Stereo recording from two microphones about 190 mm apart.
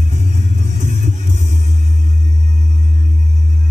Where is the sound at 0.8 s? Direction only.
40° right (ahead or behind).